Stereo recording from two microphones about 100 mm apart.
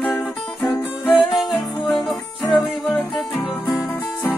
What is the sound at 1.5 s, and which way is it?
Music, 20° left (ahead or behind).